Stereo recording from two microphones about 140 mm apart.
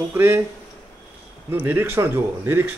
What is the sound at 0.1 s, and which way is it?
Speech, 15° right (ahead or behind).